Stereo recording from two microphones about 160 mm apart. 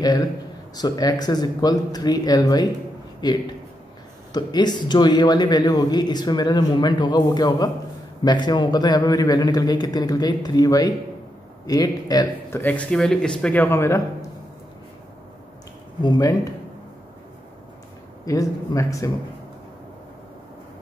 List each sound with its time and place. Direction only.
0.7 s a man's voice: 25° left (ahead or behind)
12.6 s speech: 5° left (ahead or behind)
16.0 s a man's voice: 25° left (ahead or behind)
18.2 s a man's voice: 20° left (ahead or behind)